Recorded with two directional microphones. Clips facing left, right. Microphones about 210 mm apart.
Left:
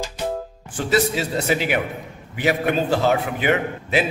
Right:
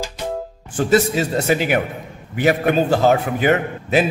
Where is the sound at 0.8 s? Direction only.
45° right (ahead or behind).